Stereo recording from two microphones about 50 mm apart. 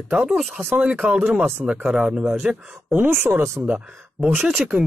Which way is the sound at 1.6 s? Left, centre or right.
Right.